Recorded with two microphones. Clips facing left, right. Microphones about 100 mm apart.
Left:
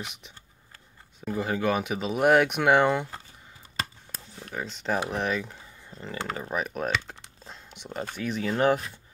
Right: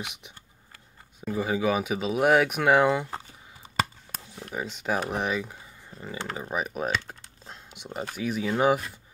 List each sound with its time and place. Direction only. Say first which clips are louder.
1.2 s speech: right 1 dB; 5° right (ahead or behind)
4.1 s a sound: right 3 dB; 10° right (ahead or behind)
4.5 s speech: even; 5° right (ahead or behind)